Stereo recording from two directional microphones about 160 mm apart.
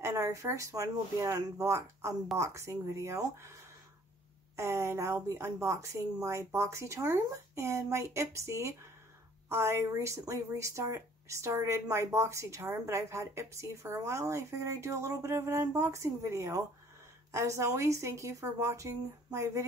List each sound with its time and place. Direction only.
0.0 s a woman's voice: 20° right (ahead or behind)
4.6 s a woman's voice: 20° right (ahead or behind)